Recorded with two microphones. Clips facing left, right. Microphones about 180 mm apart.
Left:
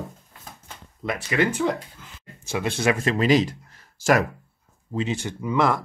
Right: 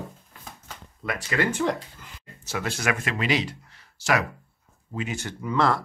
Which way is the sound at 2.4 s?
20° left (ahead or behind).